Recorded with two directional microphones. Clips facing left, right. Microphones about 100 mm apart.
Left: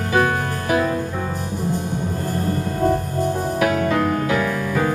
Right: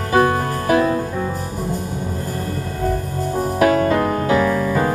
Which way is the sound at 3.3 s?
40° right (ahead or behind).